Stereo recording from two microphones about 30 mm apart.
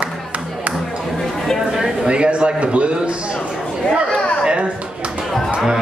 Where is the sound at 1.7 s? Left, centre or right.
Centre.